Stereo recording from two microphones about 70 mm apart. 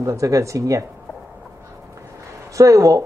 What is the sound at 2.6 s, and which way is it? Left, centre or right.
Speech, right.